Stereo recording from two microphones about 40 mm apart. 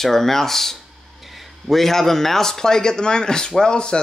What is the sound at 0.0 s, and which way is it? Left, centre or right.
A man's voice, centre.